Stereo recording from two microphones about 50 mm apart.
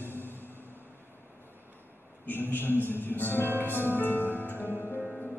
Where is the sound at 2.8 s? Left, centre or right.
Left.